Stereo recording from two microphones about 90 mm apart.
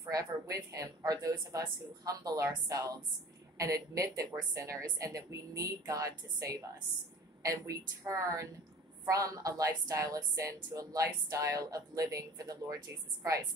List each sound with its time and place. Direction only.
0.0 s speech: 40° right (ahead or behind)
8.1 s speech: 35° right (ahead or behind)